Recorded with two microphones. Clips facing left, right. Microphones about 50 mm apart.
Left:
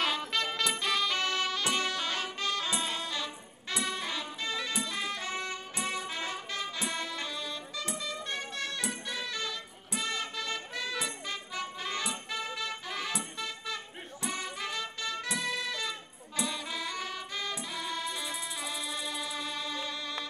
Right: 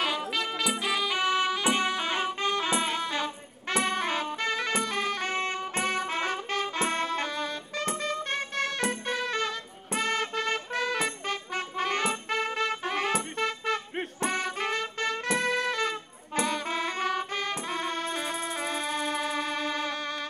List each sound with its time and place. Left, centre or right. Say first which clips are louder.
0.6 s music: right 3 dB; centre; by 20.2 s right